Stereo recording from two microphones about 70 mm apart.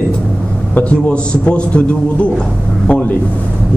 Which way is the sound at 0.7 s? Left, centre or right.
Centre.